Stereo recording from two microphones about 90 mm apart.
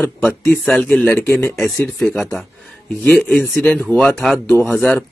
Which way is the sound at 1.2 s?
25° left (ahead or behind).